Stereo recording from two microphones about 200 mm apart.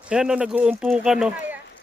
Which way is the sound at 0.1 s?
5° right (ahead or behind).